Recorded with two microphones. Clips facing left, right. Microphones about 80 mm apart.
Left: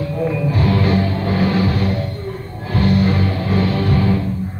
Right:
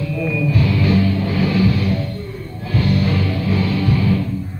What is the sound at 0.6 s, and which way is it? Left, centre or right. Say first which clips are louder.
Music: even; left.